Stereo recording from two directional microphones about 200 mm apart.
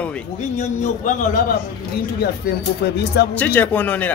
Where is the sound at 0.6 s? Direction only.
35° left (ahead or behind).